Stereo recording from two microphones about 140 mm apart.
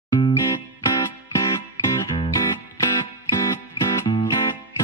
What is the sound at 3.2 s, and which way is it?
Music, 30° left (ahead or behind).